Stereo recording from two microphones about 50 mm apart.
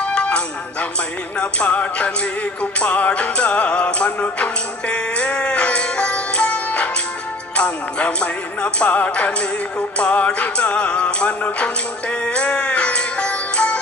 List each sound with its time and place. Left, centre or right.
0.0 s music: left